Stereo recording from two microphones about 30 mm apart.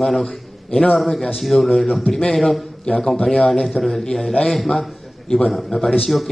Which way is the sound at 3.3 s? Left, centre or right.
Centre.